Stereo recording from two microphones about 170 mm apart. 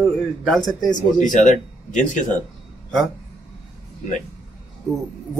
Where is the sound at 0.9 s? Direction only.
50° left (ahead or behind).